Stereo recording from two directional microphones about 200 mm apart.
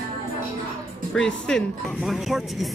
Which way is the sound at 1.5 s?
Centre (ahead or behind).